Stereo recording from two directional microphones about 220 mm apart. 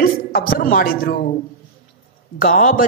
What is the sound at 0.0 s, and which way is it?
Speech, 40° left (ahead or behind).